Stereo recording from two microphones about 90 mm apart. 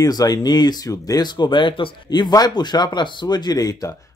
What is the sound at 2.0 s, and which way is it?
A man's voice, 50° left (ahead or behind).